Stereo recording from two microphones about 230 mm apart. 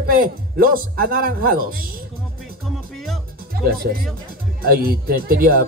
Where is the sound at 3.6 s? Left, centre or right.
Right.